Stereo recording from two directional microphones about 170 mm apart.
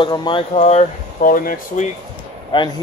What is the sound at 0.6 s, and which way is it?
Speech, 40° left (ahead or behind).